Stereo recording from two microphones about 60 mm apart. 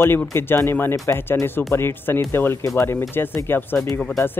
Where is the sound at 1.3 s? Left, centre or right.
Left.